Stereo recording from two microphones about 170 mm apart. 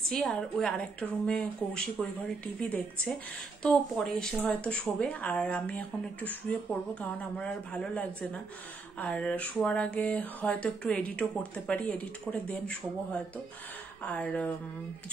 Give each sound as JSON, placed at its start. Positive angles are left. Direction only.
{"t": 0.1, "sound": "a woman's voice", "side_deg": 5}